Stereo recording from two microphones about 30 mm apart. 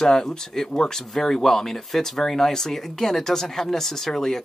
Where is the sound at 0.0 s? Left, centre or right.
Centre.